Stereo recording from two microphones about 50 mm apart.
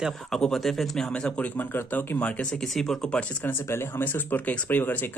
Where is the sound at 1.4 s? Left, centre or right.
Left.